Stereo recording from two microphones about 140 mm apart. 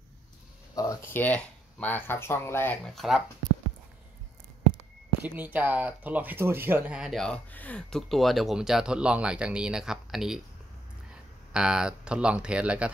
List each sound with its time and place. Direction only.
0.7 s speech: 20° left (ahead or behind)
2.8 s speech: centre (ahead or behind)
5.2 s speech: 10° right (ahead or behind)
11.5 s speech: 5° right (ahead or behind)